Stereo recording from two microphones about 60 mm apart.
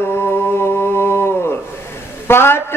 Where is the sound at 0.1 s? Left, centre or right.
Left.